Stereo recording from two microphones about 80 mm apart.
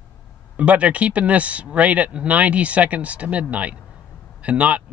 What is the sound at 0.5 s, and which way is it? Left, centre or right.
Speech, centre.